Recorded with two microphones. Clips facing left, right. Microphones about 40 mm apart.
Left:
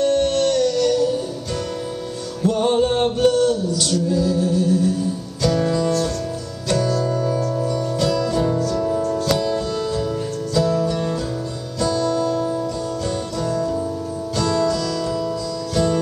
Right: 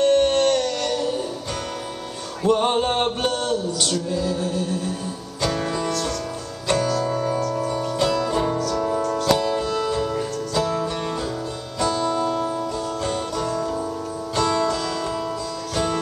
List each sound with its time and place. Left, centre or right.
0.0 s music: right
2.4 s male singing: right
5.4 s music: right
7.1 s music: right